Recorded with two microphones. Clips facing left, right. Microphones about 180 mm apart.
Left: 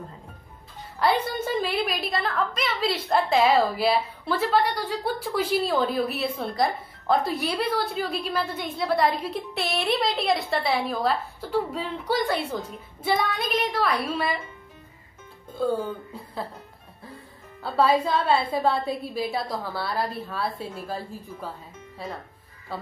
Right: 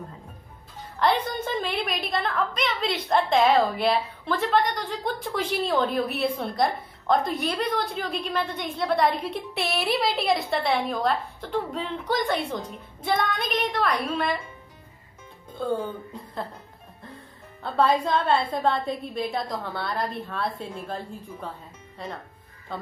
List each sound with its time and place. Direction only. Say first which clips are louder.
0.9 s a woman's voice: even; 10° left (ahead or behind)
15.5 s speech: left 2 dB; 5° left (ahead or behind)
17.6 s a woman's voice: left 1 dB; 5° left (ahead or behind)